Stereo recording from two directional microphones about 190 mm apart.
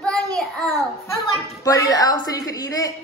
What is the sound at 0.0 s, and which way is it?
Child singing, 5° left (ahead or behind).